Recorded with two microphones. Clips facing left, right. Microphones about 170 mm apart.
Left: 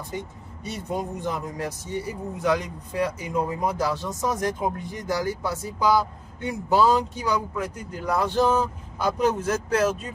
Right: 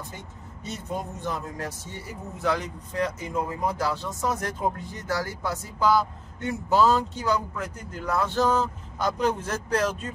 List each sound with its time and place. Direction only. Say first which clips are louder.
0.7 s speech: left 3 dB; 15° left (ahead or behind)